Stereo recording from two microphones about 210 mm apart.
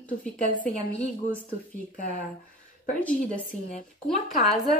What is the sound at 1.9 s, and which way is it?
Speech, 40° left (ahead or behind).